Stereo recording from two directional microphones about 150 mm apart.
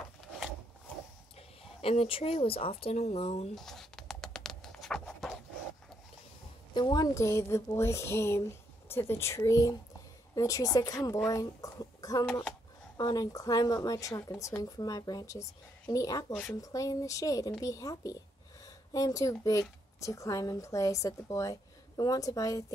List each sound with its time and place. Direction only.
1.6 s speech: 40° left (ahead or behind)
3.5 s a sound: centre (ahead or behind)
6.7 s a woman's voice: 30° left (ahead or behind)